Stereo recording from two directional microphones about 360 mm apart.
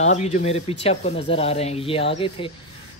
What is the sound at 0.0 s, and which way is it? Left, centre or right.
Speech, centre.